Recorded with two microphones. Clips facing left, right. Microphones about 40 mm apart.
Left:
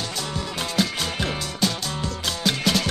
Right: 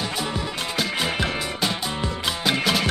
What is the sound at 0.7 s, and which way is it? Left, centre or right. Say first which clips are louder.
Music: even; centre.